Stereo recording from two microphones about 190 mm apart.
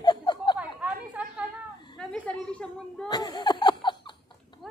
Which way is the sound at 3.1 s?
20° left (ahead or behind).